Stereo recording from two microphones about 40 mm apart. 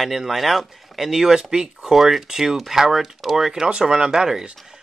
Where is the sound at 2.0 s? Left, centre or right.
Centre.